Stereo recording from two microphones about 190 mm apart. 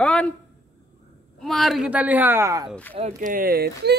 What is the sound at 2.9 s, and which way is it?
Speech, 40° right (ahead or behind).